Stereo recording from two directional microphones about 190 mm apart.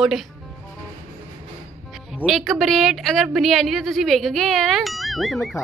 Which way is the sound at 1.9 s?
Centre (ahead or behind).